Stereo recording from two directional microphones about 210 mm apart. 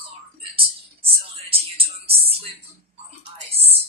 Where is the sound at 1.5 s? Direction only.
25° right (ahead or behind).